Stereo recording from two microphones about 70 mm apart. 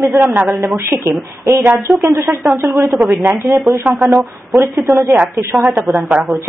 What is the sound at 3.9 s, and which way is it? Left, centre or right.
Speech, right.